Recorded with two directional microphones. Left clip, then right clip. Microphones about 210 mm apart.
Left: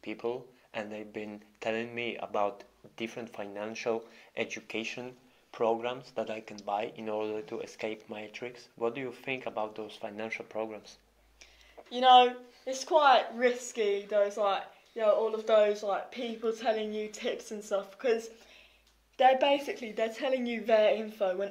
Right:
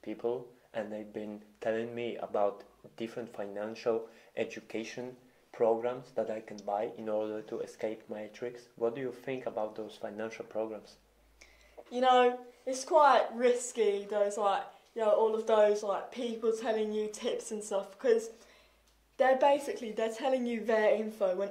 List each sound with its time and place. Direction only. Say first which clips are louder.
0.0 s speech: even; 20° left (ahead or behind)
6.1 s speech: right 1 dB; 35° left (ahead or behind)
6.8 s speech: even; 25° left (ahead or behind)
11.9 s a woman's voice: left 4 dB; 15° left (ahead or behind)